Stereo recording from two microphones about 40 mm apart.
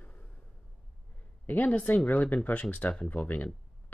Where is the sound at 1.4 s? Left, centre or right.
Left.